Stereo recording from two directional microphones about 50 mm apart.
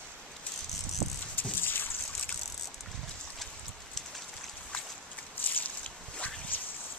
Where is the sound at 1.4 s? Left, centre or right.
Left.